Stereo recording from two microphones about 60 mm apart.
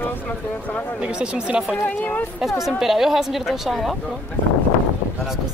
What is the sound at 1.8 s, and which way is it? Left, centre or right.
Speech, left.